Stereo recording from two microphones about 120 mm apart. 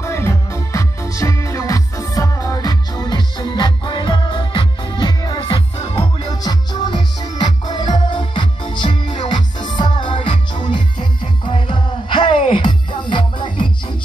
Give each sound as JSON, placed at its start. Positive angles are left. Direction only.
{"t": 0.0, "sound": "music", "side_deg": 20}